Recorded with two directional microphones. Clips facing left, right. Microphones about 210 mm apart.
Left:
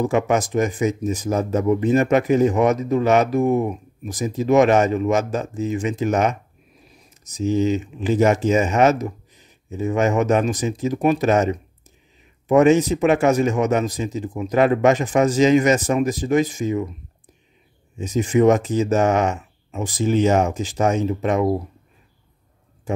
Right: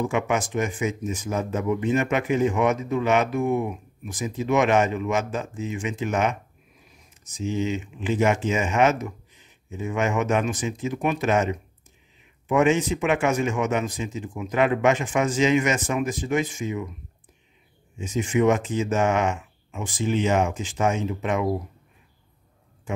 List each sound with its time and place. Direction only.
0.0 s speech: 40° left (ahead or behind)
17.9 s speech: 40° left (ahead or behind)
22.9 s speech: 35° left (ahead or behind)